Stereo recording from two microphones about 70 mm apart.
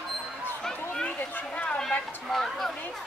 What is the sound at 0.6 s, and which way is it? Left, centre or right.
Speech, centre.